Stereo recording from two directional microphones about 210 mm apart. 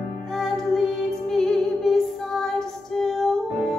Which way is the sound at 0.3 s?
Centre (ahead or behind).